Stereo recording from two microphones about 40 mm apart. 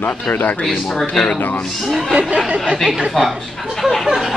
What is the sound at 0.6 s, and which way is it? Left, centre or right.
Speech, centre.